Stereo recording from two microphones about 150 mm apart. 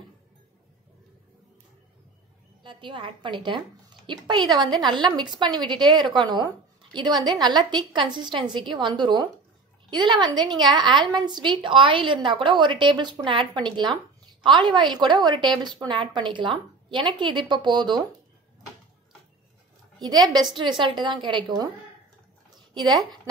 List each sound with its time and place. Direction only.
2.6 s a woman's voice: 35° right (ahead or behind)
20.0 s a woman's voice: 25° right (ahead or behind)
22.8 s a woman's voice: 25° right (ahead or behind)